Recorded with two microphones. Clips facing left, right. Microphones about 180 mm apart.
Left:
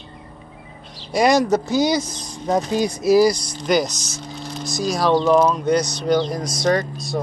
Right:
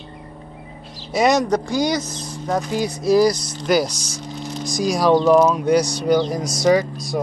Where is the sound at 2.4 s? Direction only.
20° left (ahead or behind).